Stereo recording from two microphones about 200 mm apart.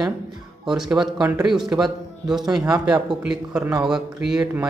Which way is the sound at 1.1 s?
20° right (ahead or behind).